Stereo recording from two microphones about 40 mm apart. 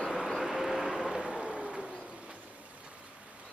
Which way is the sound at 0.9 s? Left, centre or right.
Right.